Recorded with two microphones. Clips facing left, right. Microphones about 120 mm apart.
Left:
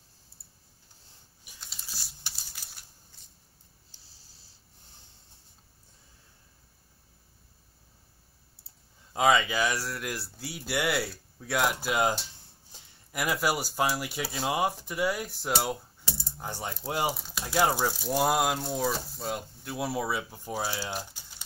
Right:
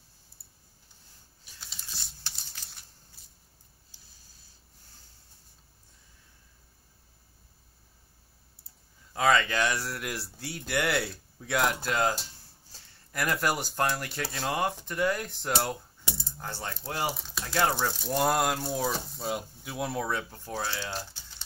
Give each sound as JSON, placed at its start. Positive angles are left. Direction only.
{"t": 1.6, "sound": "computer keyboard", "side_deg": 0}
{"t": 4.0, "sound": "a sound", "side_deg": 30}
{"t": 9.1, "sound": "speech", "side_deg": 10}
{"t": 16.3, "sound": "coin", "side_deg": 15}
{"t": 17.1, "sound": "speech", "side_deg": 0}